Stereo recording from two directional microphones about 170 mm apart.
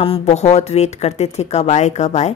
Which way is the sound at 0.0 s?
40° left (ahead or behind).